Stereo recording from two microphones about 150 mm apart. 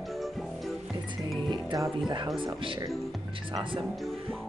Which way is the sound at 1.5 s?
30° right (ahead or behind).